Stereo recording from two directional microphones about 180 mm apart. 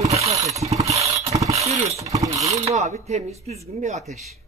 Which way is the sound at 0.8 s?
15° right (ahead or behind).